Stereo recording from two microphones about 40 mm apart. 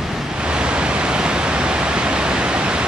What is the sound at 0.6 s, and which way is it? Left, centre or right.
Pink noise, right.